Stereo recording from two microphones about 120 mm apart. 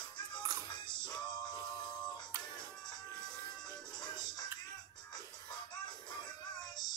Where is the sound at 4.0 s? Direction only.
35° left (ahead or behind).